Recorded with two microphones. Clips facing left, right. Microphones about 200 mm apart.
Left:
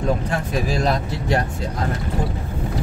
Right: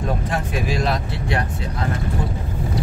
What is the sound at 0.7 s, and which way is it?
Speech, 40° left (ahead or behind).